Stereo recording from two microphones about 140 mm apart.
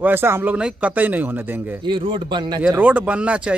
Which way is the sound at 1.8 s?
35° right (ahead or behind).